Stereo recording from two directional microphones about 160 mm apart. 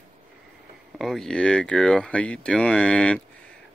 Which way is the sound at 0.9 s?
Centre (ahead or behind).